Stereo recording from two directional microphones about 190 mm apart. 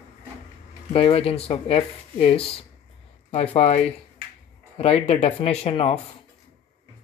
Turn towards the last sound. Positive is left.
turn(degrees=30)  # may be behind; listen again after turning